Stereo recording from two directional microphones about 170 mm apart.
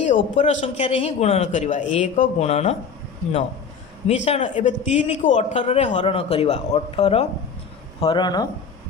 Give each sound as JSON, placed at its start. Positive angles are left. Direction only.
{"t": 0.1, "sound": "speech", "side_deg": 45}
{"t": 4.1, "sound": "speech", "side_deg": 45}